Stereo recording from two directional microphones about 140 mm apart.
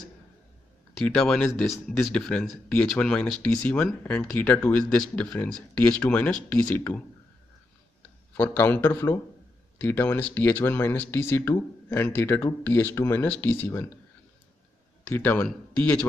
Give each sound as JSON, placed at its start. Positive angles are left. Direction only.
{"t": 1.0, "sound": "speech", "side_deg": 5}
{"t": 8.4, "sound": "speech", "side_deg": 15}
{"t": 15.1, "sound": "speech", "side_deg": 10}